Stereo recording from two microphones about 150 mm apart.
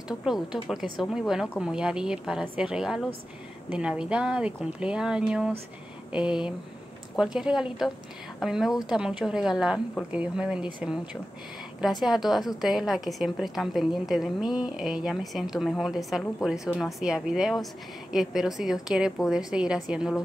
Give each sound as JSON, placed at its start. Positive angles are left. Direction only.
{"t": 0.2, "sound": "a woman's voice", "side_deg": -5}
{"t": 12.0, "sound": "a woman's voice", "side_deg": 0}